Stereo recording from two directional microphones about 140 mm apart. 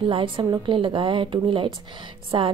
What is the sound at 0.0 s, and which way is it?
A woman's voice, 40° right (ahead or behind).